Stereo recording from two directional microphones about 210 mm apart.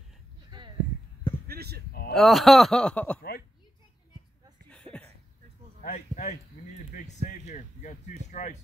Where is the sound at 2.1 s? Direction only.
Centre (ahead or behind).